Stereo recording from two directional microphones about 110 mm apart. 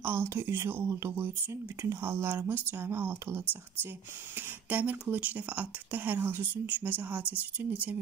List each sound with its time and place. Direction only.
0.0 s speech: 20° right (ahead or behind)